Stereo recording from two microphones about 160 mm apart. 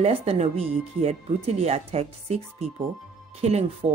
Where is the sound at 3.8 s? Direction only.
40° right (ahead or behind).